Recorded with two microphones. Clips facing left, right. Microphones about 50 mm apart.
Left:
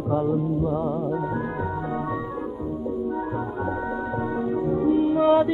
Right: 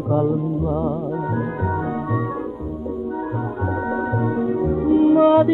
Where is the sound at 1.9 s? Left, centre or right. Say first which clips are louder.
Right 4 dB; centre.